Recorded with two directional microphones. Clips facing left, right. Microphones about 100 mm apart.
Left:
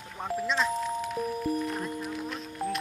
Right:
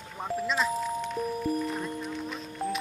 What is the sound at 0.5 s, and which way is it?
Music, centre (ahead or behind).